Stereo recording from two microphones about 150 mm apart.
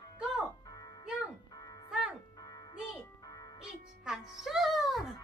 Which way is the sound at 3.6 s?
5° right (ahead or behind).